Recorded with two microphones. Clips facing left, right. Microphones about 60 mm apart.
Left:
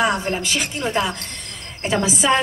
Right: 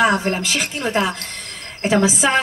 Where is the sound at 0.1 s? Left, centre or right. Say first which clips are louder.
Right 2 dB; right.